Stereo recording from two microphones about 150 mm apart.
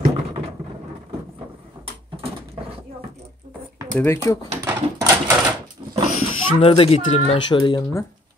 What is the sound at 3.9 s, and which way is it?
Speech, 15° left (ahead or behind).